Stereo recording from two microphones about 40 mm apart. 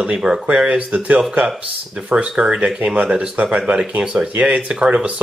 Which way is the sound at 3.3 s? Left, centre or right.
Right.